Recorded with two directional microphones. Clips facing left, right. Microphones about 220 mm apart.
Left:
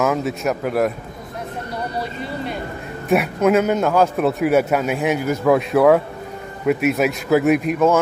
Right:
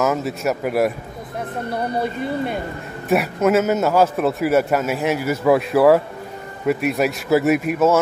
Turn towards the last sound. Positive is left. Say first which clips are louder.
# left 1 dB
turn(degrees=-5)  # may be behind; listen again after turning